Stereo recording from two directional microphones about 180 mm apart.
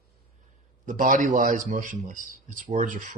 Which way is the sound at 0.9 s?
45° right (ahead or behind).